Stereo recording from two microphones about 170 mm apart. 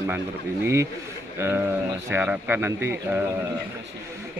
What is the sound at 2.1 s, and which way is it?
A man's voice, 10° right (ahead or behind).